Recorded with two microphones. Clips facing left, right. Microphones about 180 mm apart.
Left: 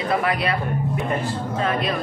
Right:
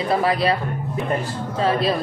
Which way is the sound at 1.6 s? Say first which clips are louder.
Right 4 dB; 30° right (ahead or behind).